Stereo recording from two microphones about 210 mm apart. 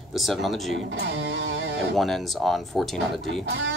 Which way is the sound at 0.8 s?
55° right (ahead or behind).